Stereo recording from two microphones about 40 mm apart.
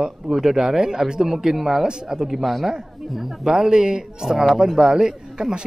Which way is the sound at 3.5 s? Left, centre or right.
Centre.